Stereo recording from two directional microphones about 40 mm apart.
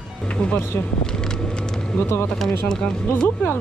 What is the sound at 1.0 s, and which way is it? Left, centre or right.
Vehicle, centre.